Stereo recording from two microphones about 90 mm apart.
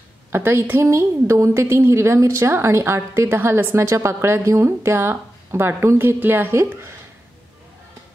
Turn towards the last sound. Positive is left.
turn(degrees=-30)  # may be behind; listen again after turning